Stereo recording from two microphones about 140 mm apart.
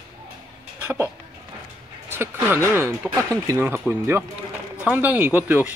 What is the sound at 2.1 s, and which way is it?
Speech, 15° right (ahead or behind).